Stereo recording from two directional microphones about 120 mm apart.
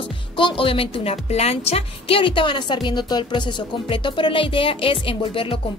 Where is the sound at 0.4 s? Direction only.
45° left (ahead or behind).